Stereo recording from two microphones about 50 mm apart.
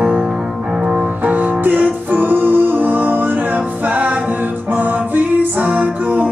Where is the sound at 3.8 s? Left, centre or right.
Right.